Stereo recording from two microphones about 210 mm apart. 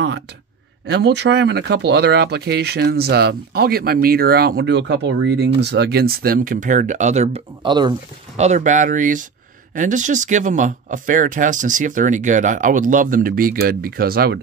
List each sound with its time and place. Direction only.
0.8 s speech: 55° right (ahead or behind); by 7.9 s 20° right (ahead or behind)
8.4 s speech: 35° right (ahead or behind)